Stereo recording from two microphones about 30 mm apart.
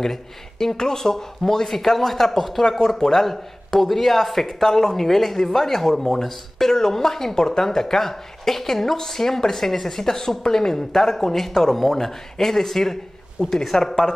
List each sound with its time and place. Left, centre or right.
0.0 s speech: centre